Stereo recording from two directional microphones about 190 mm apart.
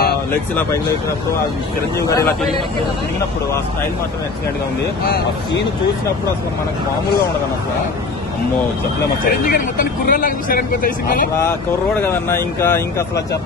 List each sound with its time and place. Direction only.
9.2 s speech: 50° left (ahead or behind)
12.0 s speech: 10° left (ahead or behind)